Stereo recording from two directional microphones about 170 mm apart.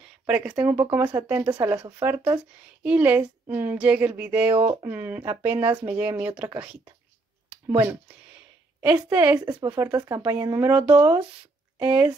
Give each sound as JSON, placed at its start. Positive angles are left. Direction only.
{"t": 0.3, "sound": "a woman's voice", "side_deg": -10}
{"t": 7.8, "sound": "a woman's voice", "side_deg": -10}
{"t": 9.4, "sound": "a woman's voice", "side_deg": -25}